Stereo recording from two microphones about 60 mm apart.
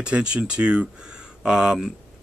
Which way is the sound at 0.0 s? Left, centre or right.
Centre.